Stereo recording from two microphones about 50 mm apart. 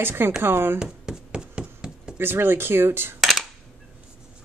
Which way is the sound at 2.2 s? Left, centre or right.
Right.